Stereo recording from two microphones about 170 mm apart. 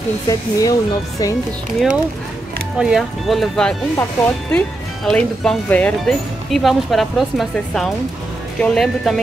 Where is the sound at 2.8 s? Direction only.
Centre (ahead or behind).